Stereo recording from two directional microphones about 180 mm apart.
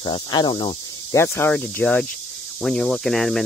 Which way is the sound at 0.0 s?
25° left (ahead or behind).